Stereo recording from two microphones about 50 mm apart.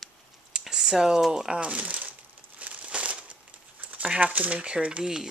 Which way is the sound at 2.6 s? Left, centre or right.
Right.